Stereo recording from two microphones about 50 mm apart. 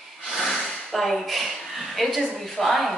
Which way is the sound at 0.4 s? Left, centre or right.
Centre.